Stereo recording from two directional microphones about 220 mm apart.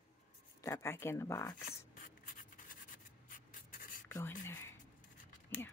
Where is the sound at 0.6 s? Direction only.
10° left (ahead or behind).